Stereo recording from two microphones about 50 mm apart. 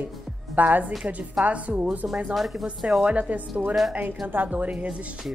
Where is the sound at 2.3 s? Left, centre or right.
Centre.